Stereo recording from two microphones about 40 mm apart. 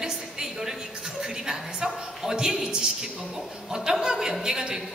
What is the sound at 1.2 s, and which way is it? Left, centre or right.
A woman's voice, centre.